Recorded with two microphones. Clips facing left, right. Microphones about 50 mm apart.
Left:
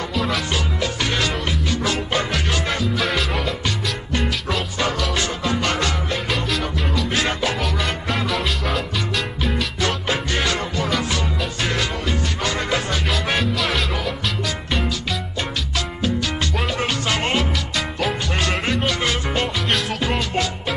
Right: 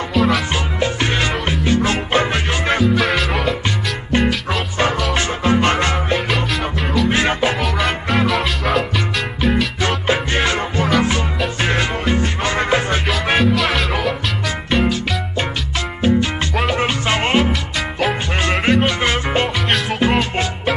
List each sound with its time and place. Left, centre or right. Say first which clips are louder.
0.1 s music: right 8 dB; centre
1.0 s music: right 3 dB; right
3.0 s music: right 4 dB; centre
5.1 s music: right 5 dB; right
7.1 s music: right 5 dB; right
7.6 s music: right 4 dB; centre
9.8 s music: right 4 dB; right
13.4 s music: right 5 dB; centre
16.7 s music: right 4 dB; right